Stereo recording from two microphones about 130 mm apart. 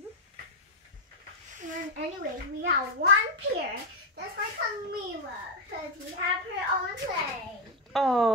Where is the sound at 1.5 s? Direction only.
75° right (ahead or behind).